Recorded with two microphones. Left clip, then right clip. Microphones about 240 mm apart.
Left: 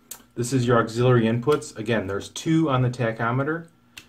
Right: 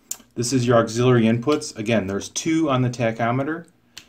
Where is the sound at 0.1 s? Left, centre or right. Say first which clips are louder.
Right 3 dB; right.